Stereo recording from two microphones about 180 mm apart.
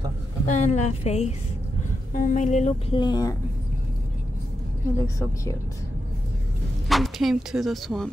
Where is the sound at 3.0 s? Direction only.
25° left (ahead or behind).